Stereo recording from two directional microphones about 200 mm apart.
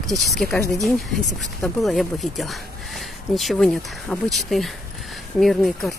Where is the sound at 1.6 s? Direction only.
Centre (ahead or behind).